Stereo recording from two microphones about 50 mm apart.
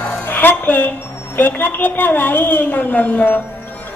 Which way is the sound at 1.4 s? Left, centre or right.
Left.